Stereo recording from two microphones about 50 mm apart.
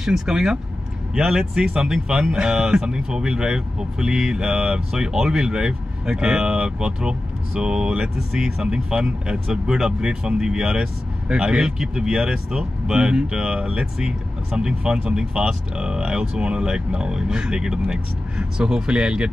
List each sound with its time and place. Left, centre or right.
0.0 s speech: centre